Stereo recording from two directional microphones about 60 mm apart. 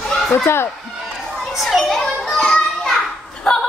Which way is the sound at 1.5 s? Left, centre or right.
Centre.